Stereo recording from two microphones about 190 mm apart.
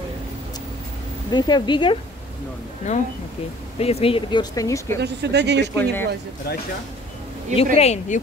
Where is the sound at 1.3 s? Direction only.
20° left (ahead or behind).